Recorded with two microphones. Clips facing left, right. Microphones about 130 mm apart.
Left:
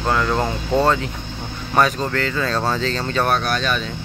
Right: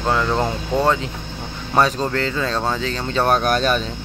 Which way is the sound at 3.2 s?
40° right (ahead or behind).